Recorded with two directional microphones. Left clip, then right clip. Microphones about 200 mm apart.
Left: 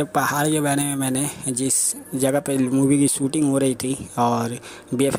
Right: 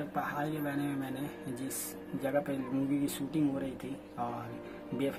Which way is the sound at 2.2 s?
40° left (ahead or behind).